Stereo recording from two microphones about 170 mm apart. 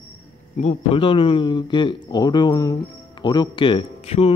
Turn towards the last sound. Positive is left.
turn(degrees=40)  # may be behind; listen again after turning